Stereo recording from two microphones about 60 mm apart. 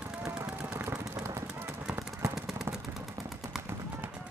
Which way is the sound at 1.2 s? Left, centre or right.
Right.